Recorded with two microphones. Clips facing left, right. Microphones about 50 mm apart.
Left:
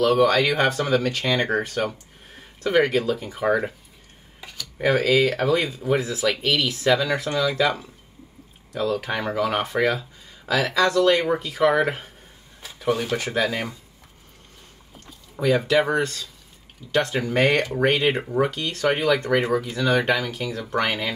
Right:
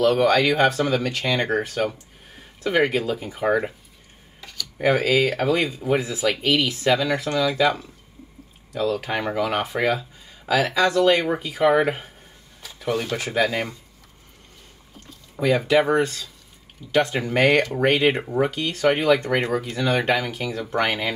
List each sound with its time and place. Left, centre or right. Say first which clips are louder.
0.2 s speech: right 1 dB; centre
4.4 s a sound: right 1 dB; centre
4.8 s speech: even; centre
8.7 s speech: right 1 dB; centre
12.8 s speech: left 1 dB; centre
13.1 s speech: right 1 dB; centre
15.4 s speech: right 1 dB; centre
17.4 s speech: right 2 dB; centre